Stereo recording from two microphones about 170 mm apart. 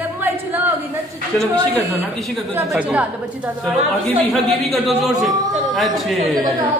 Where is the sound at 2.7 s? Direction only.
5° right (ahead or behind).